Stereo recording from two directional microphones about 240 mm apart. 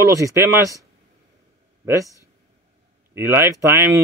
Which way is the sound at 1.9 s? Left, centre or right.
Centre.